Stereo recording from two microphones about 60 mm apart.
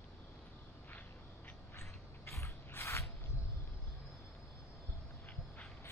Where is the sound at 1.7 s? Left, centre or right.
Left.